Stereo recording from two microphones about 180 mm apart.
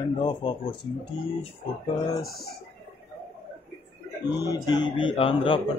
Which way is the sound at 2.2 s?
Centre (ahead or behind).